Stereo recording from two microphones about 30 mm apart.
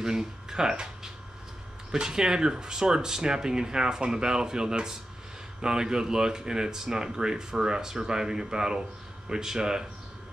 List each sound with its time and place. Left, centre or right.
0.0 s speech: right